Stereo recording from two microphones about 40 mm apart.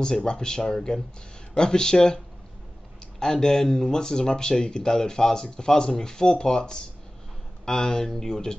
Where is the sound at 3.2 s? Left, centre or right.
Centre.